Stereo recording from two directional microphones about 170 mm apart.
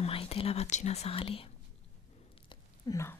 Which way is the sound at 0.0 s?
35° left (ahead or behind).